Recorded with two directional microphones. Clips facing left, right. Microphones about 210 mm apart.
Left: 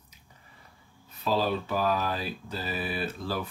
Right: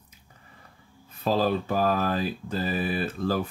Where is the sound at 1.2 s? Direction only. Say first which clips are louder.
Right 3 dB; 45° right (ahead or behind).